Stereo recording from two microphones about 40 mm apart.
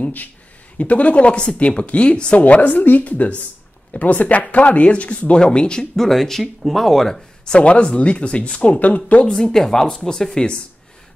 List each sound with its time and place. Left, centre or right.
0.0 s speech: left
2.3 s speech: left
5.4 s speech: left
6.0 s speech: centre
7.4 s speech: left
9.3 s speech: centre